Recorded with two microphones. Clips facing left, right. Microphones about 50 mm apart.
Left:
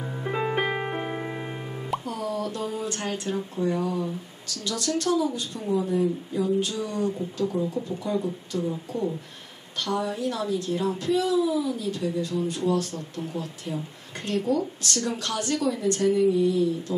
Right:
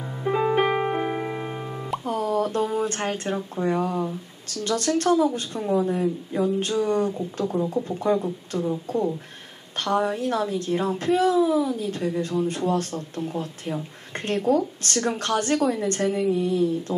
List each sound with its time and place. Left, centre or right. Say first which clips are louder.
0.0 s music: right 4 dB; centre
2.0 s speech: right 5 dB; right